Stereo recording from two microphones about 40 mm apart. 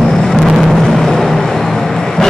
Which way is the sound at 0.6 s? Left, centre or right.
Centre.